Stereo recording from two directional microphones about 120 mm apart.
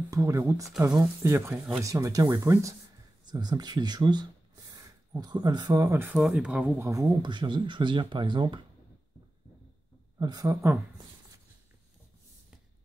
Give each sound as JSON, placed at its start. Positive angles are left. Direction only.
{"t": 0.1, "sound": "speech", "side_deg": -25}
{"t": 3.3, "sound": "speech", "side_deg": -35}
{"t": 6.1, "sound": "speech", "side_deg": -5}
{"t": 6.9, "sound": "speech", "side_deg": -35}
{"t": 10.1, "sound": "speech", "side_deg": -35}